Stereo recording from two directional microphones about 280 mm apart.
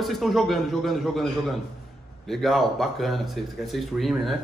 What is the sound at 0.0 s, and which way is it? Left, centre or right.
A man's voice, centre.